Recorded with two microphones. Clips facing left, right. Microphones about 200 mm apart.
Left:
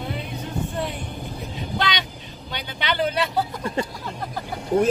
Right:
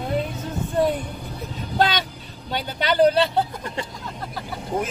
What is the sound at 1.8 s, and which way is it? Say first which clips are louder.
Vehicle: right 6 dB; 45° right (ahead or behind).